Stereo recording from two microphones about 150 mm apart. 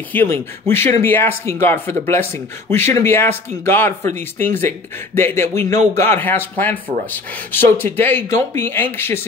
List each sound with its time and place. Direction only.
0.1 s speech: 15° left (ahead or behind)